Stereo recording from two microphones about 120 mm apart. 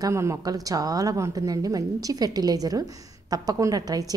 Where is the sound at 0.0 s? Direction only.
25° right (ahead or behind).